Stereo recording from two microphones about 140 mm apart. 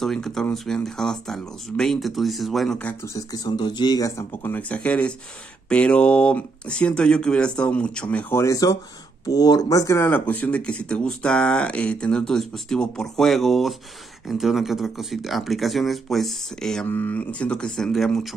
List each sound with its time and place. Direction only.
0.0 s speech: 5° left (ahead or behind)
2.8 s speech: 10° left (ahead or behind)
3.2 s speech: 25° left (ahead or behind); by 18.3 s centre (ahead or behind)